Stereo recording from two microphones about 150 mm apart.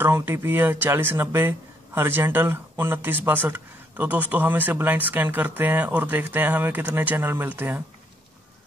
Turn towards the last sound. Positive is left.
turn(degrees=-10)  # may be behind; listen again after turning